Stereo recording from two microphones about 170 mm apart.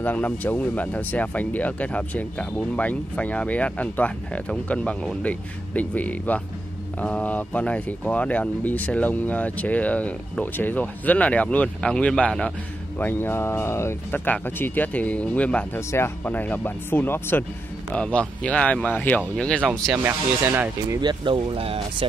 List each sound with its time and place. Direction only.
0.0 s speech: 10° left (ahead or behind)
20.0 s speech: 15° right (ahead or behind)
21.0 s speech: 25° right (ahead or behind)